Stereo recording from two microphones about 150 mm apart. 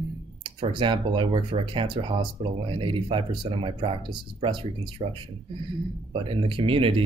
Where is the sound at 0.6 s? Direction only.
35° right (ahead or behind).